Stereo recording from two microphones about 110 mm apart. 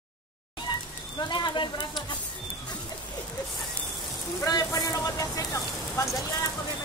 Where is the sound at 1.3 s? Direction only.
45° left (ahead or behind).